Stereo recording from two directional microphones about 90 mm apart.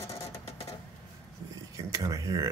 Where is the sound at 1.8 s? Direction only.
40° right (ahead or behind).